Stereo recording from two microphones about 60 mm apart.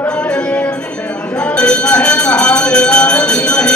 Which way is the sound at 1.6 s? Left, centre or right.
Left.